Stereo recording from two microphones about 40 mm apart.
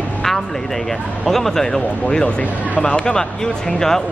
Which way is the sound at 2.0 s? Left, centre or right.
Left.